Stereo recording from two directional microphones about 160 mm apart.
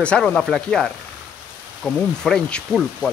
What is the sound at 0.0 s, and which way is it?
Speech, 5° left (ahead or behind).